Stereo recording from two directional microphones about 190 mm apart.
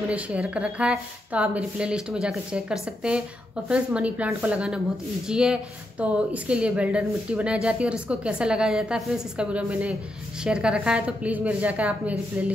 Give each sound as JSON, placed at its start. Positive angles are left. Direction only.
{"t": 0.1, "sound": "a woman's voice", "side_deg": -5}